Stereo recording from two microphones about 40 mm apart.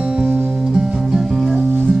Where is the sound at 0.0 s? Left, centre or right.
Right.